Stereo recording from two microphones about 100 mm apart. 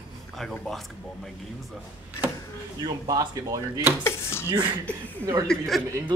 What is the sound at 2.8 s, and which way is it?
Speech, 40° right (ahead or behind).